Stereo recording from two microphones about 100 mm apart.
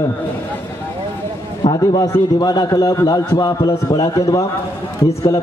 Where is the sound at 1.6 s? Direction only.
80° left.